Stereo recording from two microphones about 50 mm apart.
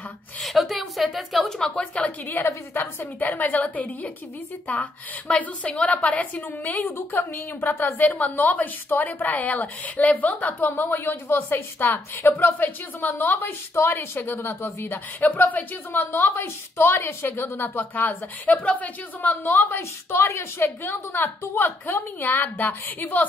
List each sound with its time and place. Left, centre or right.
0.4 s a woman's voice: centre
1.6 s a woman's voice: left
2.4 s a woman's voice: left
5.3 s a woman's voice: left
16.4 s a woman's voice: left
19.8 s a woman's voice: left